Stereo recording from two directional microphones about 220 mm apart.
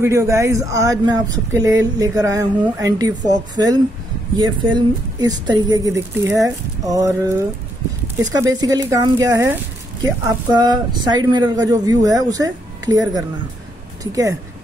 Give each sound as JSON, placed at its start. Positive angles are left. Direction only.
{"t": 0.0, "sound": "speech", "side_deg": -10}